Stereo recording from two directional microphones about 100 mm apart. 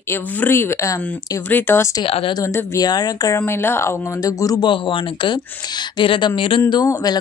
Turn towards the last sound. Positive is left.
turn(degrees=40)  # may be behind; listen again after turning